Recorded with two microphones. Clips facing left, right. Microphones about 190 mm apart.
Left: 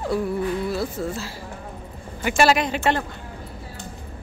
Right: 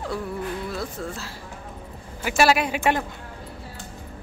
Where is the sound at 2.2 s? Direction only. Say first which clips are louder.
Left 1 dB; 5° right (ahead or behind).